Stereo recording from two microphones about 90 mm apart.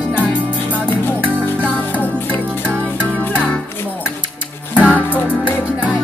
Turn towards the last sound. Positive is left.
turn(degrees=-15)  # may be behind; listen again after turning